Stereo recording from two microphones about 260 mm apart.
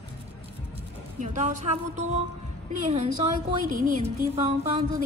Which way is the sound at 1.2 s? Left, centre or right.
Right.